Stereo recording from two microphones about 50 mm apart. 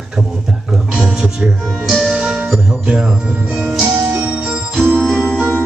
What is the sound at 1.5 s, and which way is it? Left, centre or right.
Speech, centre.